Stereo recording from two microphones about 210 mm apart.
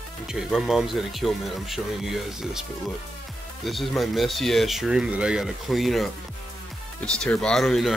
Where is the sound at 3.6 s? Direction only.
Centre (ahead or behind).